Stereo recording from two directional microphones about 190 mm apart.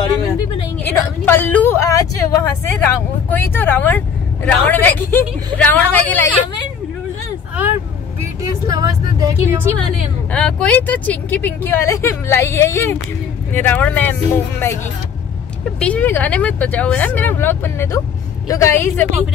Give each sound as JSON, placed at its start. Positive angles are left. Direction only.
{"t": 0.8, "sound": "a woman's voice", "side_deg": 10}
{"t": 8.2, "sound": "speech", "side_deg": -15}
{"t": 10.3, "sound": "speech", "side_deg": 5}
{"t": 15.8, "sound": "speech", "side_deg": 10}